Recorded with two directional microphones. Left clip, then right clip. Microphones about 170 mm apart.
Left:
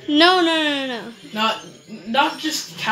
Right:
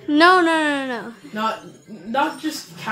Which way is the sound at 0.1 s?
5° right (ahead or behind).